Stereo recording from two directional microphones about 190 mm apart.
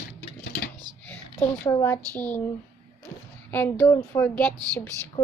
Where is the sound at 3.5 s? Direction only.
10° left (ahead or behind).